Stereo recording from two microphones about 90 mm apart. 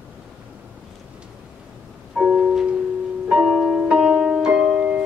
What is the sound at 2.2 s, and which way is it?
Music, 15° right (ahead or behind).